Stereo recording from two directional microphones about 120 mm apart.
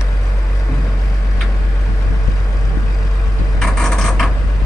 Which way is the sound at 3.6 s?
5° left (ahead or behind).